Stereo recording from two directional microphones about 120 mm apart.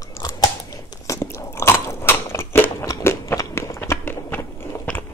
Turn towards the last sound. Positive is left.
turn(degrees=15)  # may be behind; listen again after turning